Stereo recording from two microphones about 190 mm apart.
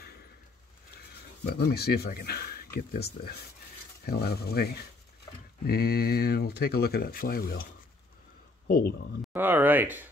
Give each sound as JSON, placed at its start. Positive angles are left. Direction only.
{"t": 0.9, "sound": "speech", "side_deg": 55}
{"t": 8.6, "sound": "speech", "side_deg": 50}
{"t": 9.3, "sound": "speech", "side_deg": -10}